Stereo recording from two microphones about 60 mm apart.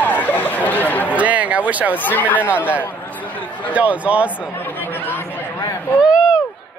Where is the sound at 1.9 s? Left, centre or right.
Left.